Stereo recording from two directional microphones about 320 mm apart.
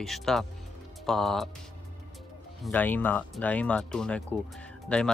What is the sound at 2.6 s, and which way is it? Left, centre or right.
Speech, centre.